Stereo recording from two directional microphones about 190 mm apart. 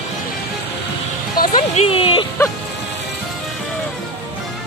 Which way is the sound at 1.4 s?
50° left (ahead or behind).